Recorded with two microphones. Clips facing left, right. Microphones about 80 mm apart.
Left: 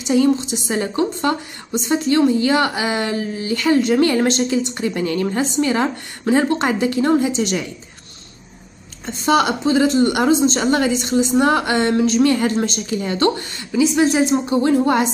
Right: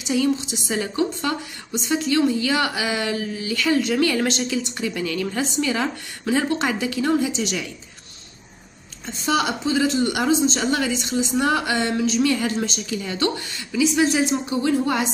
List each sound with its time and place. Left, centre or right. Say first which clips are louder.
0.0 s a woman's voice: left 5 dB; left
9.0 s a woman's voice: left 6 dB; left